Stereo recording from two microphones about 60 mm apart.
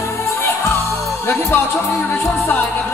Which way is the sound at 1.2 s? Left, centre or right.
Left.